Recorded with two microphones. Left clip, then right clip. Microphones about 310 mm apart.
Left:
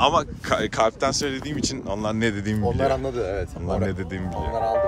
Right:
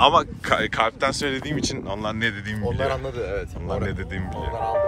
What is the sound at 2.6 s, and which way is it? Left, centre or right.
Speech, left.